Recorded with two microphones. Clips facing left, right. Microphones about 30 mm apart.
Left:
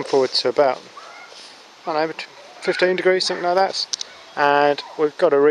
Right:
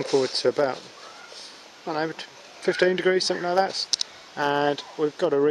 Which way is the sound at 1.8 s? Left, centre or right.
Left.